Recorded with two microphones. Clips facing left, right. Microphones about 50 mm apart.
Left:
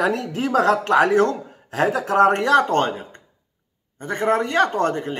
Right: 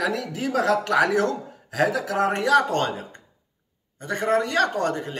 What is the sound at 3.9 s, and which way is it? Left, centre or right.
Speech, left.